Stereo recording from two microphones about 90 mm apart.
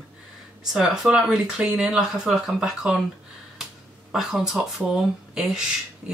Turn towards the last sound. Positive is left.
turn(degrees=-5)  # may be behind; listen again after turning